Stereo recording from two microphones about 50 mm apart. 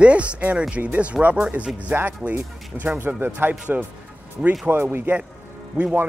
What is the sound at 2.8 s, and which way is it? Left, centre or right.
A man's voice, right.